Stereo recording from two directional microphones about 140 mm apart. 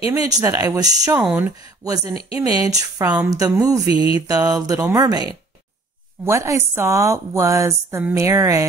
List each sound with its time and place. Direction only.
0.0 s a woman's voice: 25° right (ahead or behind)
1.2 s speech: 10° right (ahead or behind)
2.3 s a woman's voice: 25° right (ahead or behind)